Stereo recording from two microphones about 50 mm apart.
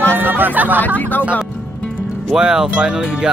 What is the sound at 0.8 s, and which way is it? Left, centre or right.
Speech, left.